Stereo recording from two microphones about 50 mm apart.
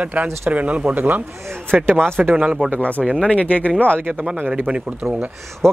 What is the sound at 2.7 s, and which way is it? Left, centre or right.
Speech, left.